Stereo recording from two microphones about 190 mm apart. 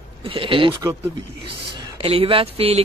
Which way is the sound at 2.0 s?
30° right (ahead or behind).